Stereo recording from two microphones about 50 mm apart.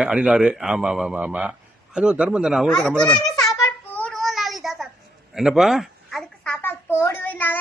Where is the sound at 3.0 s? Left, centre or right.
Centre.